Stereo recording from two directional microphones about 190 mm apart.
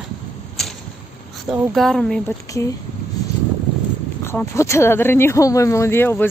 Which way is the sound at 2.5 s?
15° left (ahead or behind).